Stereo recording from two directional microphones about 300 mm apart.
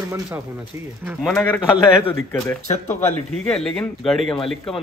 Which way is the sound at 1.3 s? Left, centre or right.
Centre.